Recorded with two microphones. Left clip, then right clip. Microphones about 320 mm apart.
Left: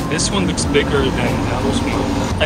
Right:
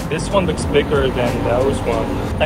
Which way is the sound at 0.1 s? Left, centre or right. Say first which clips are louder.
Right 3 dB; centre.